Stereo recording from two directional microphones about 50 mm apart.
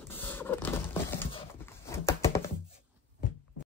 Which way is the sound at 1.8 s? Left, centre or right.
Left.